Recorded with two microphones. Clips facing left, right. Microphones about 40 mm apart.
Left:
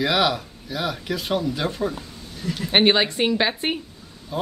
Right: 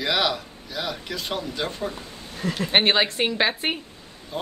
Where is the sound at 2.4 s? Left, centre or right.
Right.